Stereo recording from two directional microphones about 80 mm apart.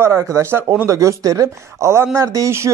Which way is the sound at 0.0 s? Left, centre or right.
Right.